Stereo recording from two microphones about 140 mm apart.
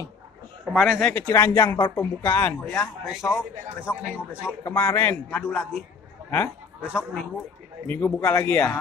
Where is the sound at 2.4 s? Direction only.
15° left (ahead or behind).